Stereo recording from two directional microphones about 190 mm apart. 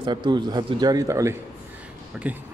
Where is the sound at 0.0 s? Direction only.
25° right (ahead or behind).